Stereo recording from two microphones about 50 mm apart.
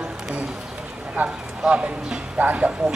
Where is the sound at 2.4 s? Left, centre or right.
Right.